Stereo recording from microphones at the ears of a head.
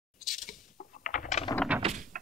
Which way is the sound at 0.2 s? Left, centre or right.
Left.